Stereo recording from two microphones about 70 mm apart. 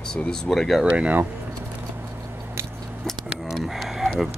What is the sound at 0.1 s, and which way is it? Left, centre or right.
Speech, centre.